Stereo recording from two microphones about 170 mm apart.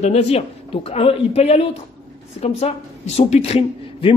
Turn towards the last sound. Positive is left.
turn(degrees=40)  # may be behind; listen again after turning